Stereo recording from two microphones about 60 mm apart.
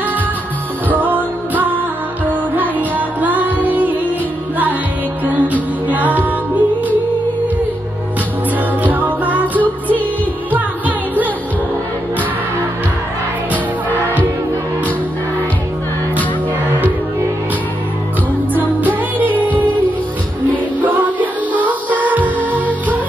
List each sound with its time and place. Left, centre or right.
0.8 s music: right
3.2 s music: right
5.2 s music: right
8.8 s music: right
18.5 s music: right
20.8 s music: right